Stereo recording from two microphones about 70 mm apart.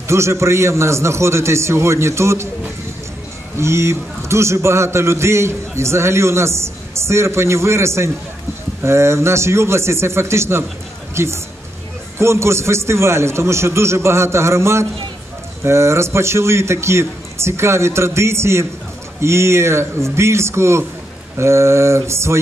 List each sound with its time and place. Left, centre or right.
0.1 s a man's voice: right
3.5 s a man's voice: right